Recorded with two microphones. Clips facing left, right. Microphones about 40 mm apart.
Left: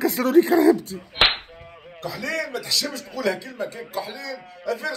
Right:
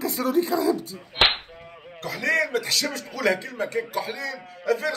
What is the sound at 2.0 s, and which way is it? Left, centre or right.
A man's voice, right.